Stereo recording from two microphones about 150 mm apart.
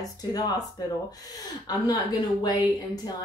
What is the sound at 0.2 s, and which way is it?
A woman's voice, 25° left (ahead or behind).